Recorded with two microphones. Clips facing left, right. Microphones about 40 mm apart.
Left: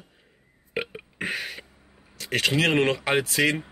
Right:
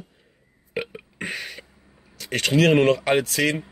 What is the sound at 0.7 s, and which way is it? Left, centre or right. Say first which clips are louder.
Burping: right 1 dB; centre.